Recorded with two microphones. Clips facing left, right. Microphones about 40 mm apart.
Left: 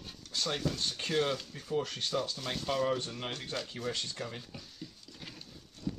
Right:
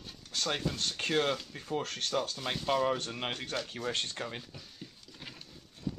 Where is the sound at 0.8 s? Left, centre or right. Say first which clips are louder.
Right 1 dB; right.